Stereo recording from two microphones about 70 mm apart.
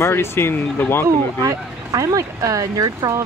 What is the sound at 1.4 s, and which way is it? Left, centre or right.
Speech, right.